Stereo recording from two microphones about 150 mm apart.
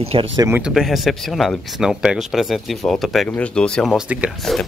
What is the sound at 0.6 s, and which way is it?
Speech, 5° right (ahead or behind).